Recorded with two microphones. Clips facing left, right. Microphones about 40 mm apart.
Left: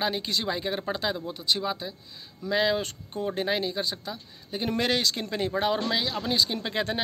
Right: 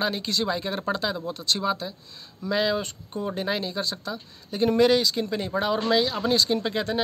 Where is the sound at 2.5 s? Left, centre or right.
Centre.